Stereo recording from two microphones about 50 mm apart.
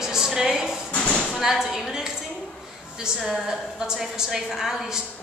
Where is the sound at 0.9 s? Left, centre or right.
Left.